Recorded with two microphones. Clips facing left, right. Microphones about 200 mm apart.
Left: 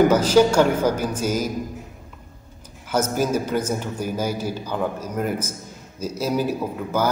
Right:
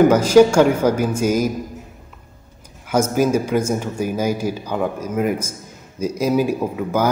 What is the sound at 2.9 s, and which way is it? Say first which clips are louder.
Speech: right 4 dB; 10° right (ahead or behind).